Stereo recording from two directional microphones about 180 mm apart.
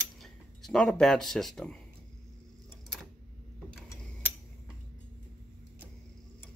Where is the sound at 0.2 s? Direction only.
Centre (ahead or behind).